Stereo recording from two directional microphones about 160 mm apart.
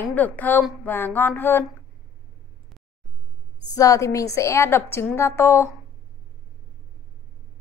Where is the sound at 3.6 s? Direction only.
20° left (ahead or behind).